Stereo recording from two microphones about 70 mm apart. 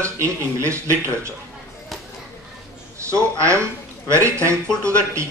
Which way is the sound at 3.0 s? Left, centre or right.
Right.